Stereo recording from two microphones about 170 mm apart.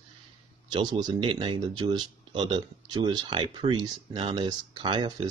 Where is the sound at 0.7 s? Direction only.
25° right (ahead or behind).